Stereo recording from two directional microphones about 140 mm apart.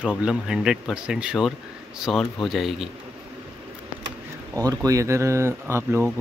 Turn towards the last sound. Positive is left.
turn(degrees=-15)  # may be behind; listen again after turning